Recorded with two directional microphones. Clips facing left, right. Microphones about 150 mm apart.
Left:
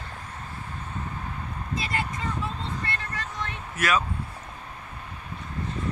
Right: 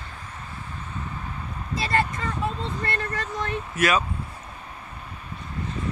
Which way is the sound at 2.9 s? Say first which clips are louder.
Right 5 dB; 40° right (ahead or behind).